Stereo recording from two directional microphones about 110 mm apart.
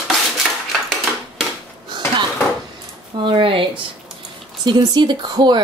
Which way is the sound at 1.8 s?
45° right (ahead or behind).